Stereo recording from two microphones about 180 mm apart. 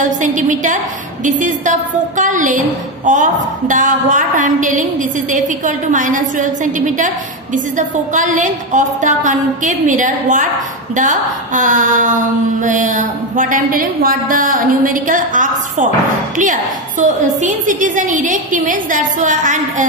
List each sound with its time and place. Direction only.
0.0 s a woman's voice: 45° right (ahead or behind)
17.0 s a woman's voice: 45° right (ahead or behind)